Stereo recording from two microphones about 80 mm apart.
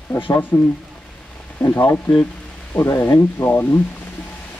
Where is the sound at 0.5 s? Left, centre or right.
Left.